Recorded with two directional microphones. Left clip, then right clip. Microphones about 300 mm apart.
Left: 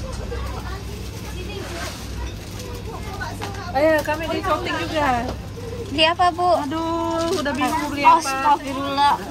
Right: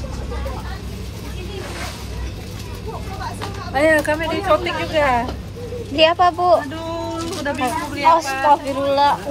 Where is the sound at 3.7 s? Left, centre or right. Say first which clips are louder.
Right 2 dB; right.